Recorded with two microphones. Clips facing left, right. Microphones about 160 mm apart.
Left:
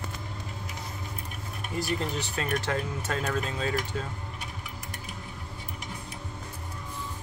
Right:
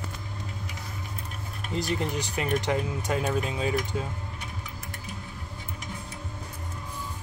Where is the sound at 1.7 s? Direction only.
20° right (ahead or behind).